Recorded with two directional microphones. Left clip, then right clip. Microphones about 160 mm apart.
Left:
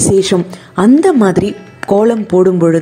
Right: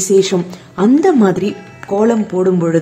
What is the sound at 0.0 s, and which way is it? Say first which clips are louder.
A woman's voice: left 1 dB; 30° left (ahead or behind).